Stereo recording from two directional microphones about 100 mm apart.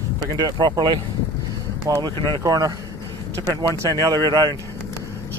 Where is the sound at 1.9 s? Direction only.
35° right (ahead or behind).